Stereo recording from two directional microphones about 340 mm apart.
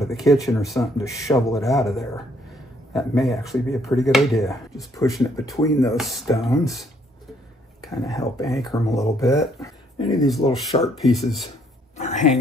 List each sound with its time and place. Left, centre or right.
0.0 s speech: centre
7.9 s speech: centre
10.1 s speech: centre
12.0 s a sound: centre